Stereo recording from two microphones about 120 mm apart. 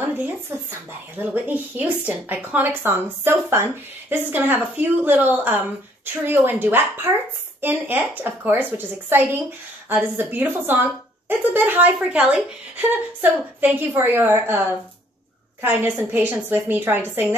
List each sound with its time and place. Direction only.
0.2 s a woman's voice: 15° right (ahead or behind)
15.6 s a woman's voice: 15° right (ahead or behind)